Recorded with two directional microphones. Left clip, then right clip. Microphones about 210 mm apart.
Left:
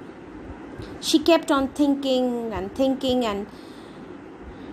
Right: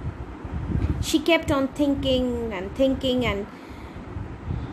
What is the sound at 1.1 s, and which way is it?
A woman's voice, 25° left (ahead or behind).